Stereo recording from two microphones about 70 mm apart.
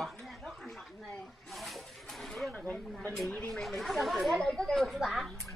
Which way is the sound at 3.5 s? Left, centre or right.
Centre.